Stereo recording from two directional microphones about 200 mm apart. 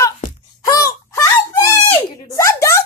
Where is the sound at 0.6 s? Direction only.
15° left (ahead or behind).